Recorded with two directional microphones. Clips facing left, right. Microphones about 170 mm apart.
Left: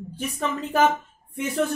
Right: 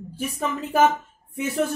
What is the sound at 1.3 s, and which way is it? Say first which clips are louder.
Speech: even; 5° right (ahead or behind).